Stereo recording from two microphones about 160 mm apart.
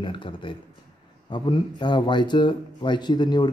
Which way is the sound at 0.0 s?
30° left (ahead or behind).